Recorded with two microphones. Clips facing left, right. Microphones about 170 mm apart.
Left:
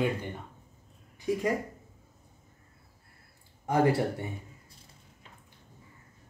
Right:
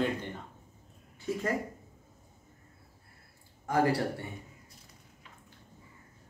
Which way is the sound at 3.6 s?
20° left (ahead or behind).